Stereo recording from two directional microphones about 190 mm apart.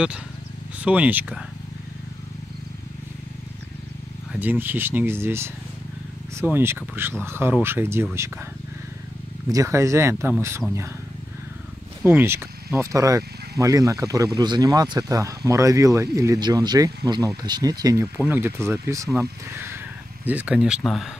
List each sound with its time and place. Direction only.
0.7 s speech: 5° right (ahead or behind)
4.3 s speech: 10° right (ahead or behind)
9.5 s speech: 15° right (ahead or behind)
12.0 s speech: 10° right (ahead or behind)
20.2 s speech: 5° right (ahead or behind)